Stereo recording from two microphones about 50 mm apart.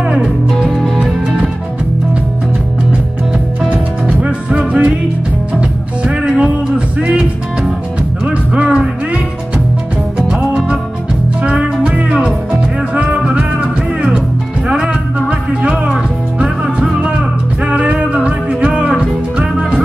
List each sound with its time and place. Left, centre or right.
0.5 s music: centre
3.6 s music: right
6.0 s music: right
8.3 s music: right
11.4 s music: right
14.9 s music: right
17.6 s music: right